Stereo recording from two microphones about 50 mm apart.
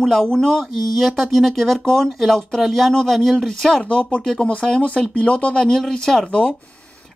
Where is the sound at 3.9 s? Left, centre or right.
Left.